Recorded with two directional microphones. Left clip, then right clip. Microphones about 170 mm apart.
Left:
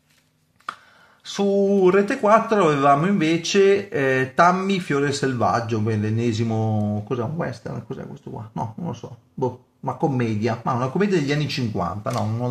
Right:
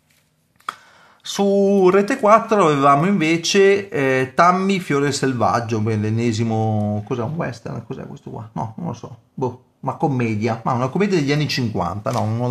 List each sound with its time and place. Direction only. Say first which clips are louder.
1.2 s speech: right 3 dB; 25° right (ahead or behind)